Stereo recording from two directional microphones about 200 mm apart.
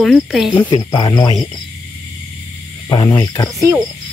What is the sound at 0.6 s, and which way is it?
Speech, 20° left (ahead or behind).